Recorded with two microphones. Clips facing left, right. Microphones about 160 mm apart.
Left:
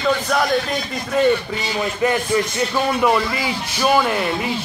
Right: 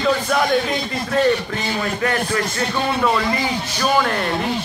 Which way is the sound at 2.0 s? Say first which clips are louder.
Left 4 dB; 15° left (ahead or behind).